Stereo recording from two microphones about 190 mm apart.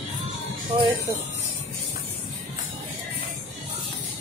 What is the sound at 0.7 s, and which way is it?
Speech, 25° right (ahead or behind).